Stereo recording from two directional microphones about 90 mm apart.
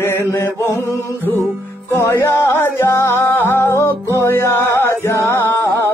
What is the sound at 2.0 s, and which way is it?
Music, 30° left (ahead or behind).